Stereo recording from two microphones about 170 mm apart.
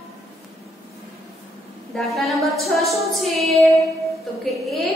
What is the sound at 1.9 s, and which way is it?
Child singing, centre (ahead or behind).